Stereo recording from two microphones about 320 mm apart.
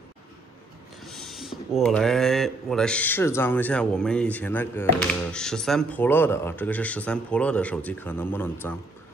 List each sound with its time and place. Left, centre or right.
1.0 s speech: centre